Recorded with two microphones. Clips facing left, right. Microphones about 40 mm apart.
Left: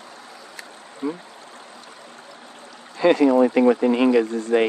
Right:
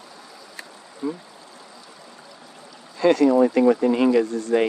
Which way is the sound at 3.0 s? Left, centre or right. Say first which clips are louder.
Left 1 dB; left.